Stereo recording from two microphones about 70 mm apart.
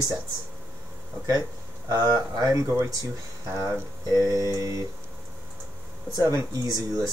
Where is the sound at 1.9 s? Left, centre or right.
Right.